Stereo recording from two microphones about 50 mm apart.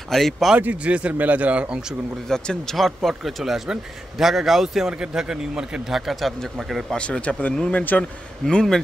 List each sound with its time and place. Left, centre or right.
0.1 s speech: centre
0.6 s speech: right
2.2 s speech: centre
2.7 s a man's voice: centre
6.9 s speech: left
8.5 s speech: centre